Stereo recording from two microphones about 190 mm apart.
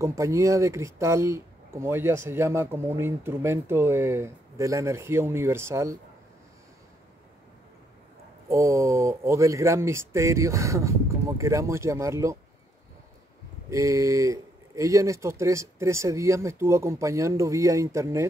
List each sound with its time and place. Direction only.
0.0 s speech: 15° right (ahead or behind)
8.5 s speech: 15° right (ahead or behind)
13.7 s speech: 15° right (ahead or behind)